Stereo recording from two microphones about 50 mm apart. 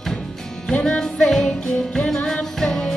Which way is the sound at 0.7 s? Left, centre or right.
Centre.